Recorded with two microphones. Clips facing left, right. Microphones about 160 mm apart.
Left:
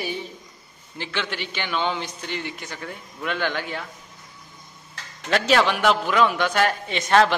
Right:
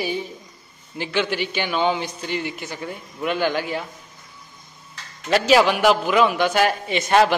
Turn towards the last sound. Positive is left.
turn(degrees=-10)  # may be behind; listen again after turning